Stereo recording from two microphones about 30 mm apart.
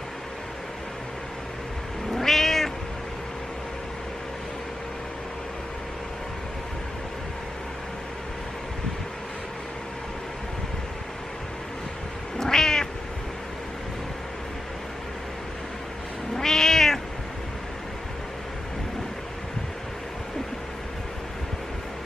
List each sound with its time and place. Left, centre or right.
2.1 s cat: centre
12.4 s cat: centre
16.3 s cat: centre